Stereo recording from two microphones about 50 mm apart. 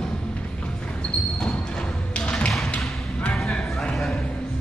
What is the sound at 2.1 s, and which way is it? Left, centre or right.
Tap, left.